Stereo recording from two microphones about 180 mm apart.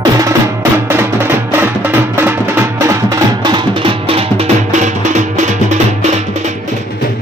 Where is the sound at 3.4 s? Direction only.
25° right (ahead or behind).